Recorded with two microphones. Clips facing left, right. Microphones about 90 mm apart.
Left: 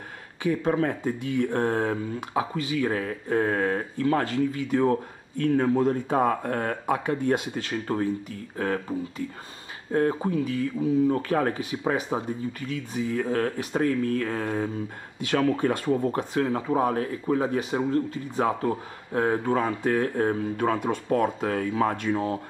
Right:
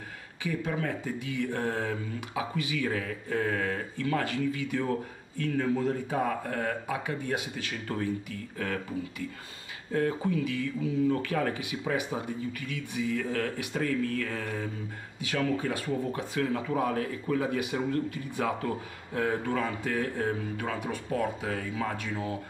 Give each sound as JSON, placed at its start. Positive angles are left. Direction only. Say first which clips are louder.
{"t": 0.4, "sound": "speech", "louder": "left 8 dB", "side_deg": 40}
{"t": 6.1, "sound": "speech", "louder": "left 6 dB", "side_deg": 45}
{"t": 7.5, "sound": "speech", "louder": "left 6 dB", "side_deg": 30}
{"t": 9.9, "sound": "speech", "louder": "left 4 dB", "side_deg": 35}
{"t": 15.3, "sound": "speech", "louder": "left 6 dB", "side_deg": 50}
{"t": 15.8, "sound": "speech", "louder": "left 6 dB", "side_deg": 45}
{"t": 16.3, "sound": "speech", "louder": "left 4 dB", "side_deg": 30}